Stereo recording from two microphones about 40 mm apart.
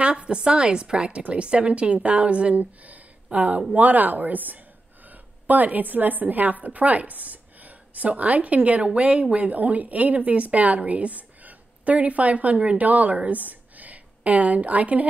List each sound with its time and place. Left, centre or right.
0.0 s a woman's voice: right